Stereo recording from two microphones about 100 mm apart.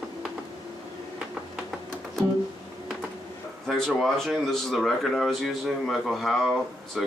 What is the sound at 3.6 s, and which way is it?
Speech, 5° left (ahead or behind).